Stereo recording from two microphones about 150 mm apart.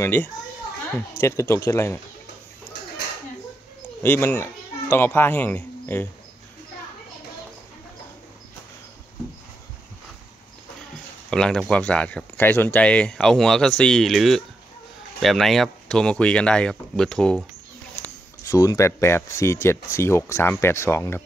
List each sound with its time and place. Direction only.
0.0 s speech: 15° left (ahead or behind)
4.0 s speech: 15° left (ahead or behind)
11.2 s speech: 5° left (ahead or behind)
18.0 s a sound: 10° left (ahead or behind)
18.4 s speech: 20° left (ahead or behind)